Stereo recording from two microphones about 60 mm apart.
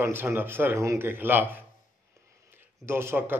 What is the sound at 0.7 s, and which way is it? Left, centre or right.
Speech, right.